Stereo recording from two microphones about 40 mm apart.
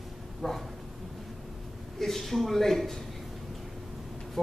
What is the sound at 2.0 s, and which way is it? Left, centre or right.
Speech, centre.